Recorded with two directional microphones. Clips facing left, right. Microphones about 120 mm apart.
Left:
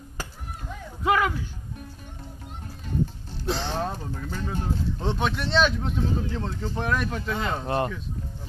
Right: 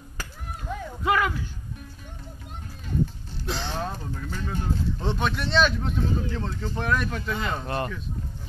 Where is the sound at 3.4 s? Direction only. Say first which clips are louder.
Left 3 dB; 30° left (ahead or behind).